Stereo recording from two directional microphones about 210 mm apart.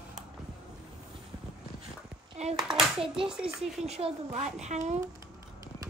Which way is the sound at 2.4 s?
30° right (ahead or behind).